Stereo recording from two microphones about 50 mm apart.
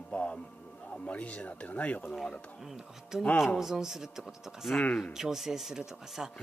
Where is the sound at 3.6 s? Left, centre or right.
Centre.